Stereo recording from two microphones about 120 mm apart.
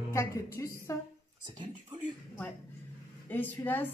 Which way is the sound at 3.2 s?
15° left (ahead or behind).